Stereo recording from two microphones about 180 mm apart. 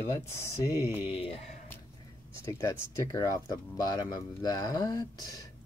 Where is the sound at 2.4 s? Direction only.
15° left (ahead or behind).